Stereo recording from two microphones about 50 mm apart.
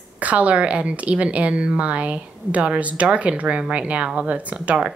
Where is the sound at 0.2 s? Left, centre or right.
Right.